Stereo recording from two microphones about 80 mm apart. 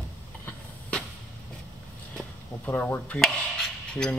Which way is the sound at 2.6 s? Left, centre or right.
Left.